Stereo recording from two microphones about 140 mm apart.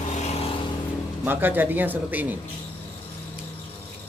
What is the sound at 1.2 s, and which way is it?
Speech, 15° right (ahead or behind).